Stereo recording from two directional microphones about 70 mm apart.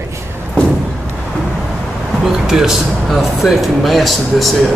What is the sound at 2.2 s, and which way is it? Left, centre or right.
Speech, centre.